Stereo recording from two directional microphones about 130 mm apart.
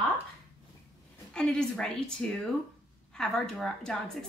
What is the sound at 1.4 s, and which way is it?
Speech, 5° left (ahead or behind).